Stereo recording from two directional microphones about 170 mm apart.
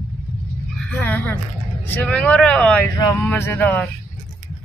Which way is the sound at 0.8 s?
10° left (ahead or behind).